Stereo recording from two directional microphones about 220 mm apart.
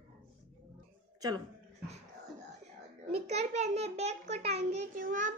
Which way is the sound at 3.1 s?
30° right (ahead or behind).